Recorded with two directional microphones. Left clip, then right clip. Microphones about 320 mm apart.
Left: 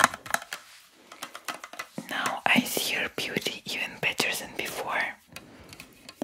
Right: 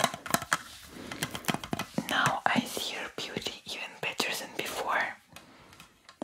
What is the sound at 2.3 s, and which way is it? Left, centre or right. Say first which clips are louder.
Whispering: left 4 dB; centre.